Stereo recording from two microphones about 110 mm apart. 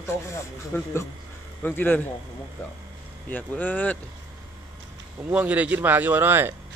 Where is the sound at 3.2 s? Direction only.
15° left (ahead or behind).